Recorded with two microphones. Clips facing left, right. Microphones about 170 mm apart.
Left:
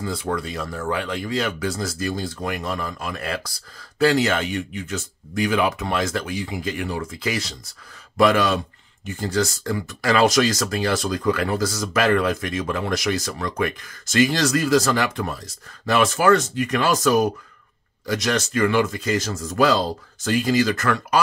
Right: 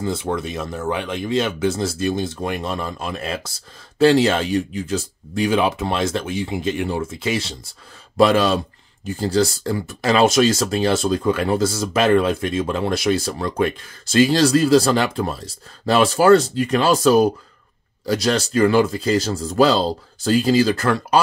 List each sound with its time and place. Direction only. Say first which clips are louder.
0.0 s speech: right 3 dB; 25° right (ahead or behind)